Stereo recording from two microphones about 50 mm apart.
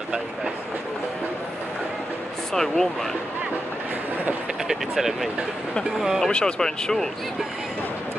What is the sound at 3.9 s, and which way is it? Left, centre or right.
Train, right.